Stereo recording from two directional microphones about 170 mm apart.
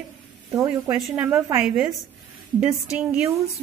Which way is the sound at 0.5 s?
15° right (ahead or behind).